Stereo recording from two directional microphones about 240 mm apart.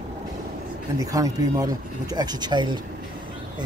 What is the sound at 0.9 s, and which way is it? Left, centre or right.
Speech, centre.